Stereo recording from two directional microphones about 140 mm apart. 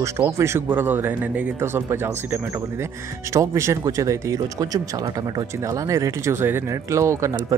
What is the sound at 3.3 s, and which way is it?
Speech, 20° right (ahead or behind).